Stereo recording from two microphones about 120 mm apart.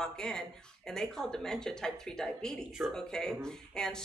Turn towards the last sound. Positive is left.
turn(degrees=5)  # may be behind; listen again after turning